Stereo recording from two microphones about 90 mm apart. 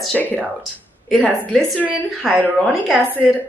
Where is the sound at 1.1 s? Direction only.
Centre (ahead or behind).